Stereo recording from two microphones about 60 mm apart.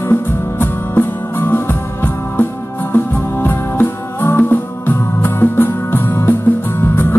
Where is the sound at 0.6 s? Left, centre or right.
Left.